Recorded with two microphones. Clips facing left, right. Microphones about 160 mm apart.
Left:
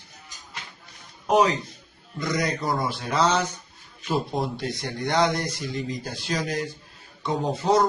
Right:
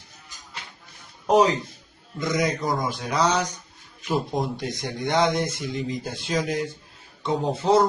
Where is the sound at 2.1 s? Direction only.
20° right (ahead or behind).